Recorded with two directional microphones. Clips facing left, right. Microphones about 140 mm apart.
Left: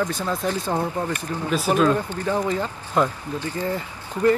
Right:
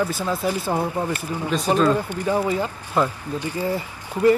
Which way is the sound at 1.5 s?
5° left (ahead or behind).